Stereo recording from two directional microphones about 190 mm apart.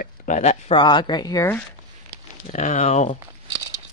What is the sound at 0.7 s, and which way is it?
Speech, 25° left (ahead or behind).